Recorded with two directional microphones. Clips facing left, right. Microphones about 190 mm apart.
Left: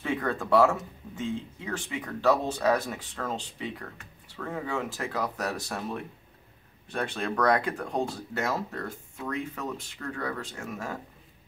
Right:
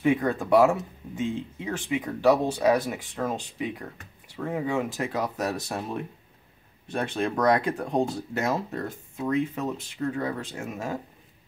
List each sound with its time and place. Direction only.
0.0 s speech: 15° right (ahead or behind)
6.9 s speech: 20° right (ahead or behind)